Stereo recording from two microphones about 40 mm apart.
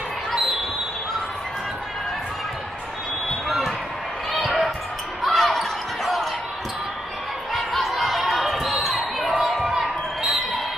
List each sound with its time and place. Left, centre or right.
0.3 s basketball bounce: centre
3.4 s basketball bounce: centre
7.5 s a sound: centre
9.4 s basketball bounce: centre